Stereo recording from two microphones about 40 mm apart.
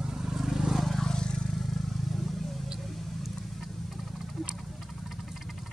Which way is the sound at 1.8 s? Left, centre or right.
Centre.